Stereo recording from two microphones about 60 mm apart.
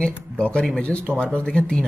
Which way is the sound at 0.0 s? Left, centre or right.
Centre.